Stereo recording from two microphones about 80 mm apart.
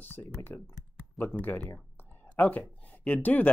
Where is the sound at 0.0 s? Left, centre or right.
Left.